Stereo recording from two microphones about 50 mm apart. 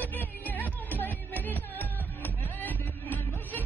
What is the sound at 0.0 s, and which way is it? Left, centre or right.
Music, left.